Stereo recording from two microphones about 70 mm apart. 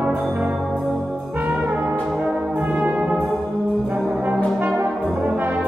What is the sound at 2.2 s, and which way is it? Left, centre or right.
Brass instrument, centre.